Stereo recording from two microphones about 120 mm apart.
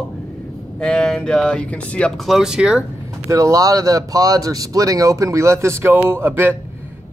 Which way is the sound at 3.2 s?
25° right (ahead or behind).